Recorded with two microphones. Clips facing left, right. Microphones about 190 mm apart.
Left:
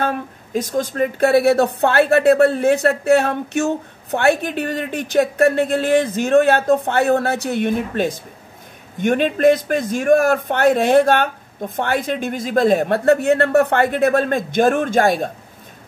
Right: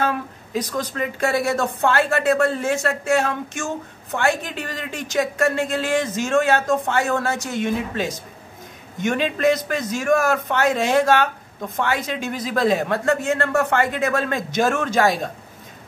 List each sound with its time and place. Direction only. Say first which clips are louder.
0.7 s a woman's voice: left 10 dB; 50° left (ahead or behind)